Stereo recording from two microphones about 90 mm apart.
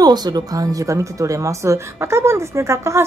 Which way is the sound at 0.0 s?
50° right (ahead or behind).